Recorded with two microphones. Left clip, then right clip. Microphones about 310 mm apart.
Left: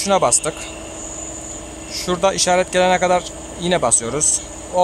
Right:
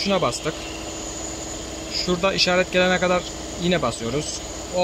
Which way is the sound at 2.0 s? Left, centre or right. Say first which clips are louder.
Left 4 dB; centre.